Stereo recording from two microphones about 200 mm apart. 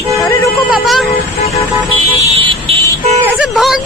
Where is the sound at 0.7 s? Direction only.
Centre (ahead or behind).